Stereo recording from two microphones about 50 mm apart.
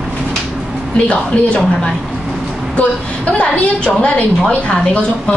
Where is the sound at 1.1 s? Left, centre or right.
Centre.